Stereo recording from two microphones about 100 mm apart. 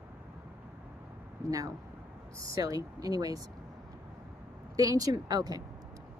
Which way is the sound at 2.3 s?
35° right (ahead or behind).